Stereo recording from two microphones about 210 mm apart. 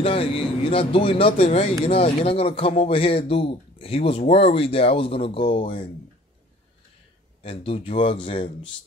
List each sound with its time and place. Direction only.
0.0 s speech: 25° left (ahead or behind)
7.4 s speech: 25° left (ahead or behind)